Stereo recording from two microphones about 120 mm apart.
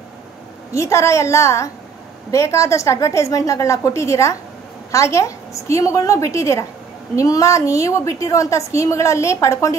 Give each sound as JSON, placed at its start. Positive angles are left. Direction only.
{"t": 0.7, "sound": "a woman's voice", "side_deg": 25}